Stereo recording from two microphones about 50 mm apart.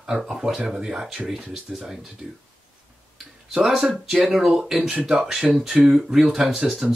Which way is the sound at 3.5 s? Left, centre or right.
Centre.